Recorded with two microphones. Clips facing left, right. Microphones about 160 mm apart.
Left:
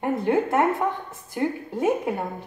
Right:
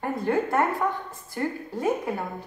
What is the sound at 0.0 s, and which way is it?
A woman's voice, 20° left (ahead or behind).